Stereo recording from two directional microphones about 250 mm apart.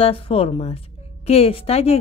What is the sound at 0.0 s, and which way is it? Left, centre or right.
A woman's voice, left.